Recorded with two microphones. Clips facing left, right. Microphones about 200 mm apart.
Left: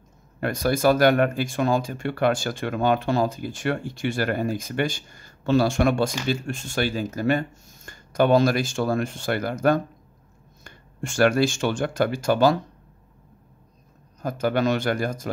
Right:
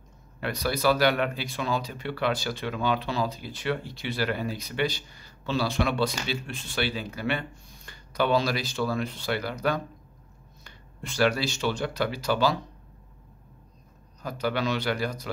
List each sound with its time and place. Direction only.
0.4 s speech: 50° left (ahead or behind)
14.2 s speech: 50° left (ahead or behind)